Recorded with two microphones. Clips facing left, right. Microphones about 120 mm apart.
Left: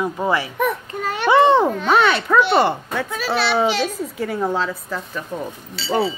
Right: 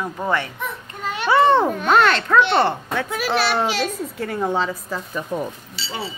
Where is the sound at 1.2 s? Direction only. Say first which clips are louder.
Left 2 dB; 20° left (ahead or behind).